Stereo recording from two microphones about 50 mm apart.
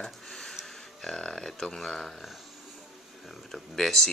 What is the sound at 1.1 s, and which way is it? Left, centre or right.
Speech, centre.